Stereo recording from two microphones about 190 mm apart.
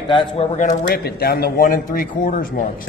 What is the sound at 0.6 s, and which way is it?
Speech, 45° left (ahead or behind).